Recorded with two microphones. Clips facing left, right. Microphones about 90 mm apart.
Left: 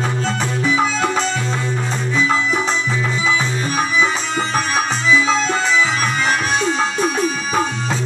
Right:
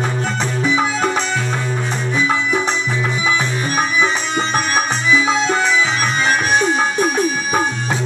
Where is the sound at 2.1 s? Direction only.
15° right (ahead or behind).